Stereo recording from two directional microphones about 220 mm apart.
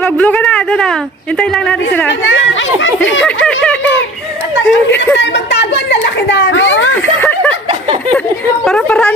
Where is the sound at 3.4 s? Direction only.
5° left (ahead or behind).